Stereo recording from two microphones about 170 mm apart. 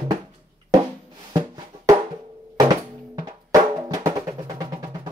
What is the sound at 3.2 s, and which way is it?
Drum, 20° right (ahead or behind).